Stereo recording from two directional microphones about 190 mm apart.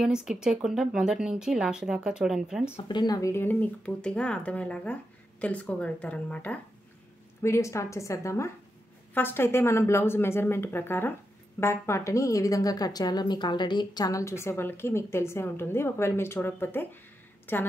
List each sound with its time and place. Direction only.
0.0 s speech: 5° right (ahead or behind)
2.9 s a woman's voice: 20° left (ahead or behind)